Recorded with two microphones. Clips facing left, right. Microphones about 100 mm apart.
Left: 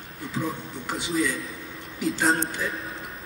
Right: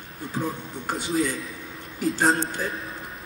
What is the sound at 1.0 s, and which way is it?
Speech, 35° right (ahead or behind).